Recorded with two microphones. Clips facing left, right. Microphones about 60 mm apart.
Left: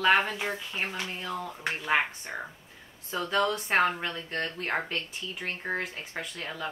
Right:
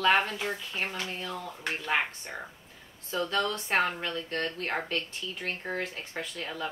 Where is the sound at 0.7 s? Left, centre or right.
Centre.